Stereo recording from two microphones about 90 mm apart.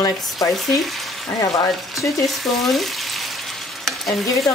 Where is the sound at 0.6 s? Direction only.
Centre (ahead or behind).